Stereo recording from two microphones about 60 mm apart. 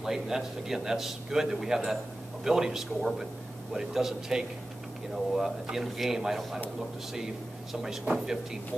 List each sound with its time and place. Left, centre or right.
0.0 s a man's voice: centre
7.7 s a man's voice: centre